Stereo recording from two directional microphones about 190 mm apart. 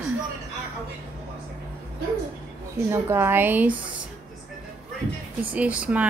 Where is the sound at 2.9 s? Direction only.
10° right (ahead or behind).